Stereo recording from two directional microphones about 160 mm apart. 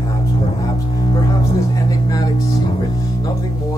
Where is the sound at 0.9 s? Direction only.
25° left (ahead or behind).